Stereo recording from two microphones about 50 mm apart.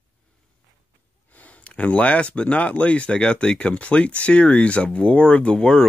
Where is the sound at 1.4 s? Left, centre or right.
Left.